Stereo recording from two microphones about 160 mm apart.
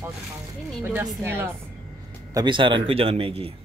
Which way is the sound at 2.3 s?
30° right (ahead or behind).